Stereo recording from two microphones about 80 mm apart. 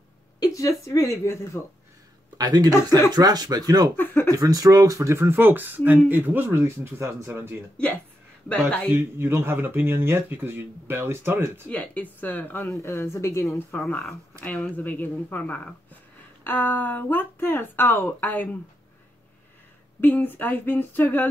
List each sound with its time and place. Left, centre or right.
0.4 s speech: left
2.3 s speech: right
3.9 s speech: left
4.3 s speech: right
7.7 s speech: centre
8.9 s speech: right
11.7 s speech: centre
13.7 s speech: centre
20.0 s speech: left